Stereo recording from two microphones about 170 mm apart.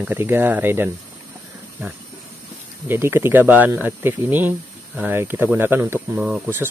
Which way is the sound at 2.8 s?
10° right (ahead or behind).